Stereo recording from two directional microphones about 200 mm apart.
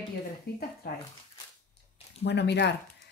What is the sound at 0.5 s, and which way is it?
Speech, 50° left (ahead or behind).